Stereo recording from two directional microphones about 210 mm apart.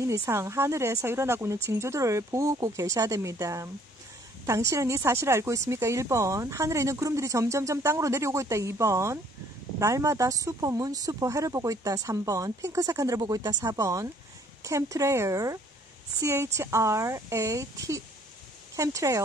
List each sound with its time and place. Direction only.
0.0 s speech: 15° right (ahead or behind)